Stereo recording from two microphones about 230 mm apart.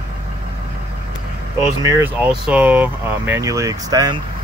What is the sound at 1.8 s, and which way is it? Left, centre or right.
Speech, centre.